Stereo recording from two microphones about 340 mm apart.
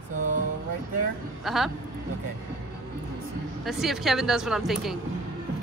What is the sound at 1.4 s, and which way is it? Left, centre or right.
Speech, centre.